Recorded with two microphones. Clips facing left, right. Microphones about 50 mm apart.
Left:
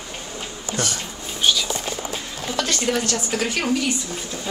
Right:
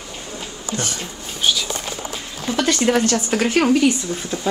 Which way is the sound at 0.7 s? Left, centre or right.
Centre.